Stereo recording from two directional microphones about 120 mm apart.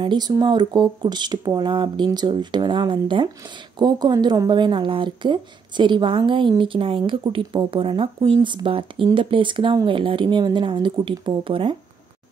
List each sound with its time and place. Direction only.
0.0 s speech: 35° right (ahead or behind)